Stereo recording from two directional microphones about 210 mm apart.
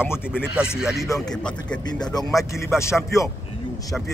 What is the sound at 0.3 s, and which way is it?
Speech, 5° right (ahead or behind).